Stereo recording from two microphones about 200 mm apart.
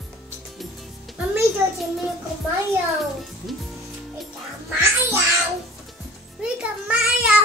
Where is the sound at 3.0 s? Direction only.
Centre (ahead or behind).